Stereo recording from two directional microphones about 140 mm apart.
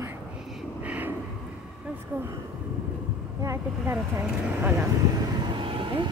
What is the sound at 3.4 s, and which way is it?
Speech, 20° right (ahead or behind).